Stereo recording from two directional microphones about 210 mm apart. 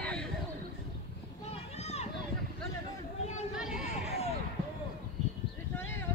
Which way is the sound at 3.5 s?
5° right (ahead or behind).